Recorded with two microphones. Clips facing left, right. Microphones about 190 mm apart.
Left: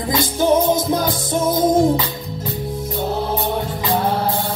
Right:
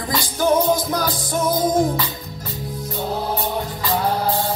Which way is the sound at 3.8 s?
20° left (ahead or behind).